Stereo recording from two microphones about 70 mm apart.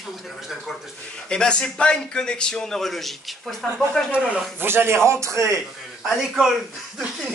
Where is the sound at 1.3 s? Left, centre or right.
Centre.